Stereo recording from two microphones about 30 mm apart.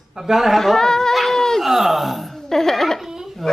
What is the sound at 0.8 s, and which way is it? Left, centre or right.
Speech, centre.